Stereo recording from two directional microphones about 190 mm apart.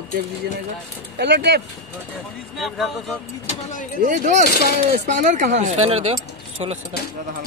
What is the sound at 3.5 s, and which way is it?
Speech, 40° left (ahead or behind).